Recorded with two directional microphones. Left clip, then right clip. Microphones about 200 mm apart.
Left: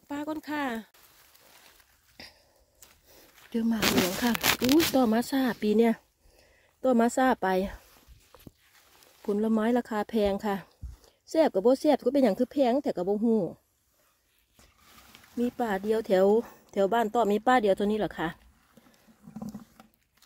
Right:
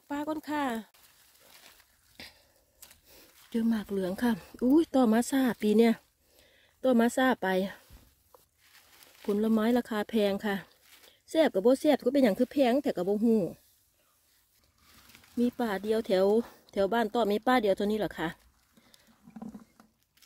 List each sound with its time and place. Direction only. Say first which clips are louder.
0.1 s speech: even; centre (ahead or behind)
2.1 s a sound: even; centre (ahead or behind)
4.9 s speech: left 1 dB; 10° right (ahead or behind)
8.3 s walk: left 6 dB; 5° left (ahead or behind)
9.2 s speech: left 1 dB; centre (ahead or behind)
15.5 s speech: left 5 dB; 5° left (ahead or behind)
19.4 s roaring cats: left 3 dB; 35° left (ahead or behind)